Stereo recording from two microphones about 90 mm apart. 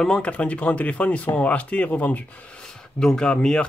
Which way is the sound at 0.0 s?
10° left (ahead or behind).